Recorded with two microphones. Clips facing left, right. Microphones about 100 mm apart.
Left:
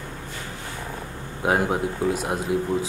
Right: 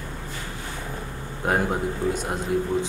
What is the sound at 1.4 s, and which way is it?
A man's voice, 5° left (ahead or behind).